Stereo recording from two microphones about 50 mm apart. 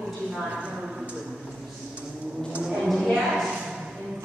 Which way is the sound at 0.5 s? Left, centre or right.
Right.